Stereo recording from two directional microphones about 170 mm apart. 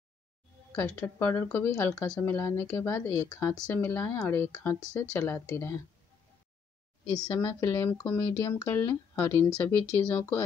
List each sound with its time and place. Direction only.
0.7 s speech: 10° left (ahead or behind)
7.3 s speech: 15° left (ahead or behind)